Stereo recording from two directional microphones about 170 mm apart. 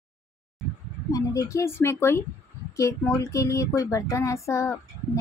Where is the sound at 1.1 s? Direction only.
20° left (ahead or behind).